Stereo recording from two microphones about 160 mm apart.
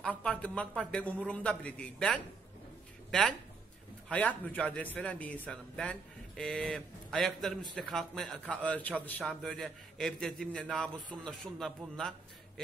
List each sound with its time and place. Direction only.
0.0 s a man's voice: 5° left (ahead or behind)